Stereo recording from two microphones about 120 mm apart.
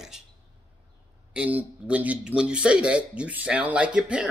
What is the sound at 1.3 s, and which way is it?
Speech, 10° right (ahead or behind).